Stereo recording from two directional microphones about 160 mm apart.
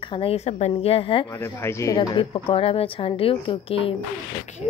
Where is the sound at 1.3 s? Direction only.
15° left (ahead or behind).